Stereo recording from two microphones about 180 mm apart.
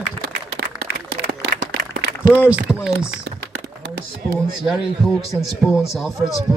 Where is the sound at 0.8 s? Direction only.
55° right (ahead or behind).